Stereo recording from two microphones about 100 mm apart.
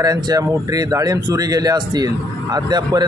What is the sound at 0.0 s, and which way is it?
Speech, 35° right (ahead or behind).